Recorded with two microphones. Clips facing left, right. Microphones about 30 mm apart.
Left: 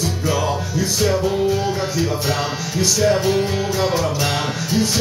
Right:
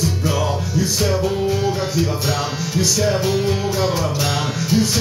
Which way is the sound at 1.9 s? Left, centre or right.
Centre.